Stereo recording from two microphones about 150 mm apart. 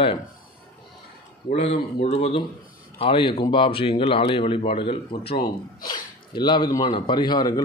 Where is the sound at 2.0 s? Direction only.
45° left (ahead or behind).